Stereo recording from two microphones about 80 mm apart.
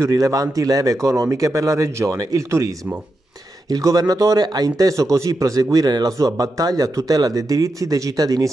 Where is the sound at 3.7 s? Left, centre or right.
Right.